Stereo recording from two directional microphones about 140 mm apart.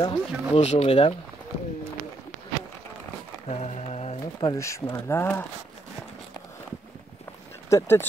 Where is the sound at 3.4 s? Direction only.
50° left (ahead or behind).